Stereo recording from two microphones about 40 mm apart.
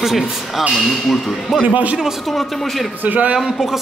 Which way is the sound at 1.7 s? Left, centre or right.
Right.